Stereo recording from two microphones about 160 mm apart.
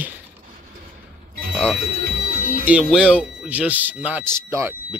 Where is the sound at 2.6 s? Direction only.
10° right (ahead or behind).